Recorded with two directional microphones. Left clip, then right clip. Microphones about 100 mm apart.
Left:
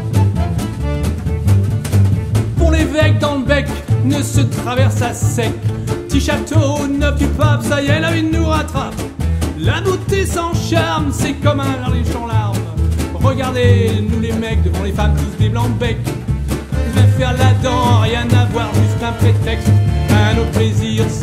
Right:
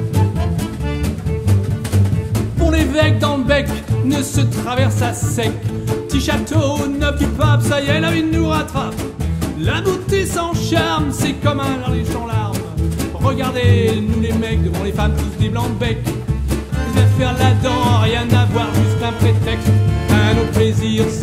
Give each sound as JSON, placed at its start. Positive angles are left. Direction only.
{"t": 2.6, "sound": "music", "side_deg": -20}
{"t": 4.1, "sound": "music", "side_deg": -30}
{"t": 13.2, "sound": "music", "side_deg": -30}
{"t": 16.9, "sound": "music", "side_deg": -15}